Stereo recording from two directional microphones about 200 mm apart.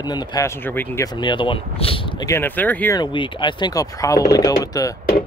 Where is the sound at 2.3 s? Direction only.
10° left (ahead or behind).